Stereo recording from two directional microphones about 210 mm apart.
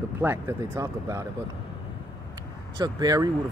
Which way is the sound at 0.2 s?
10° right (ahead or behind).